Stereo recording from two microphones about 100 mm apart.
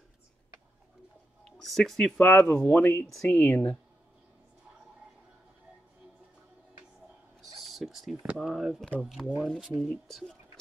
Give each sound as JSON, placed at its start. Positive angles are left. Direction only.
{"t": 1.6, "sound": "speech", "side_deg": 0}
{"t": 2.3, "sound": "speech", "side_deg": 15}
{"t": 7.6, "sound": "a sound", "side_deg": 0}
{"t": 8.4, "sound": "speech", "side_deg": -5}